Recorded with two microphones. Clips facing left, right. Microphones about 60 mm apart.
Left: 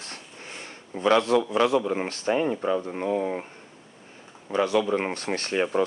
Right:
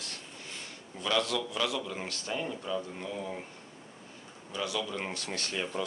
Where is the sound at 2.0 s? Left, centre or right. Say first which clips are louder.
Left 12 dB; left.